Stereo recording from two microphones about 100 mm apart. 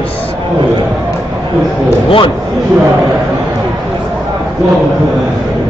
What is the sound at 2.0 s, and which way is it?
Speech, 60° left (ahead or behind).